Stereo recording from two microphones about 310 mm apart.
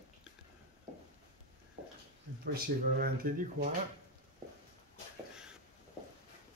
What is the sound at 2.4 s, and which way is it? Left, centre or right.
Speech, right.